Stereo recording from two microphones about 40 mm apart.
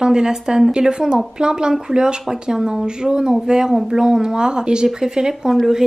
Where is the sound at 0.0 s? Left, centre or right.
Centre.